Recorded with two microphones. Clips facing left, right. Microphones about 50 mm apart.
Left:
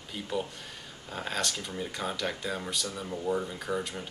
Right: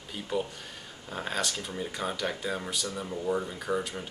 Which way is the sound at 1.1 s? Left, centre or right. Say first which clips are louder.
Right 1 dB; centre.